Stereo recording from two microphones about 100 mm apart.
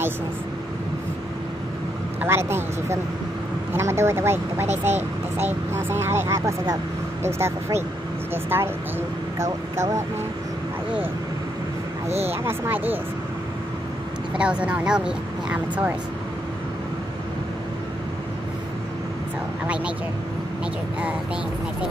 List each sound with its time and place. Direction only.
2.2 s speech: 25° right (ahead or behind)
12.3 s speech: 20° right (ahead or behind)
14.3 s speech: 10° right (ahead or behind)
19.6 s speech: 10° right (ahead or behind)